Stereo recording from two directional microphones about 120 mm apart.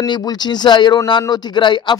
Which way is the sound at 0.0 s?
35° left (ahead or behind).